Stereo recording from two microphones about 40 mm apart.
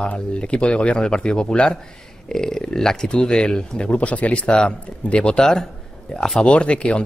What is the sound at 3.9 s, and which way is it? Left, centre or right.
Speech, left.